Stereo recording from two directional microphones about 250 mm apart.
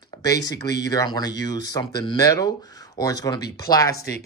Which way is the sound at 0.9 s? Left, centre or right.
Centre.